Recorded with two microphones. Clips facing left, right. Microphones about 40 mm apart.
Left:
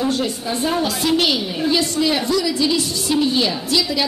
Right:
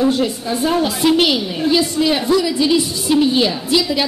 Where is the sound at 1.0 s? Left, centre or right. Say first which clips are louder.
Right 5 dB; centre.